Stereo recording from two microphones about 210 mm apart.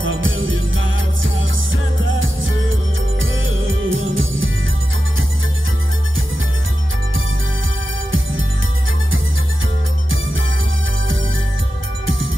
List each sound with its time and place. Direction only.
0.0 s music: 70° right (ahead or behind)
8.1 s music: 70° right (ahead or behind)